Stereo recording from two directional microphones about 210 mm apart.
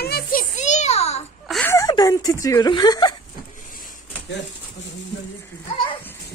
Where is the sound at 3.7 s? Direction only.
40° left (ahead or behind).